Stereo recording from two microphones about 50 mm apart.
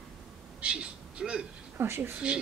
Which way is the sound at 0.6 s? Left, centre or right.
Right.